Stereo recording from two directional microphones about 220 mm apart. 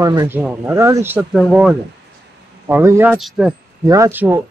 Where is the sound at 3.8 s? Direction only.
15° right (ahead or behind).